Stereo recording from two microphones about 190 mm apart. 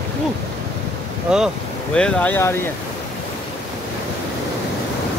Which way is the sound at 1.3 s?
5° right (ahead or behind).